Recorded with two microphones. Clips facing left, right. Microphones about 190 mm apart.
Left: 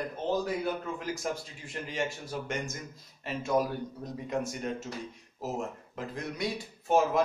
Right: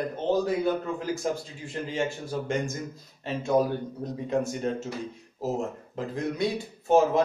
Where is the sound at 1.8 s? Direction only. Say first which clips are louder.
Right 4 dB; 30° right (ahead or behind).